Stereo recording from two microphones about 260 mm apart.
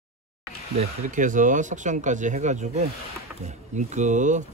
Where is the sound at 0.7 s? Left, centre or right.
Right.